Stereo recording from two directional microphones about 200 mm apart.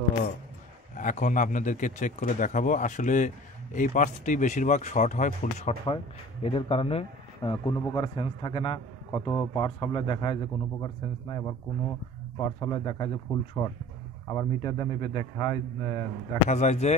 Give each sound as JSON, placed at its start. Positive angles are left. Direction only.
{"t": 0.9, "sound": "a man's voice", "side_deg": 40}
{"t": 16.4, "sound": "speech", "side_deg": 35}